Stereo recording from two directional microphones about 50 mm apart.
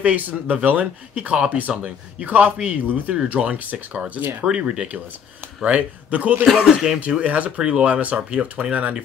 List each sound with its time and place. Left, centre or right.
0.0 s speech: right
4.2 s speech: right
4.5 s speech: centre
6.6 s speech: centre
7.0 s speech: right